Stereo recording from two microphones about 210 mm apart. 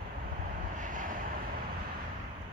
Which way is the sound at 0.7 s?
40° right (ahead or behind).